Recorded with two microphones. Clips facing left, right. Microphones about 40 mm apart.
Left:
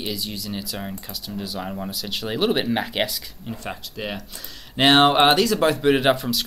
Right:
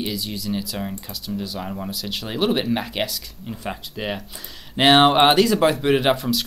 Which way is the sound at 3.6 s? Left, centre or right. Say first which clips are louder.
Right 3 dB; centre.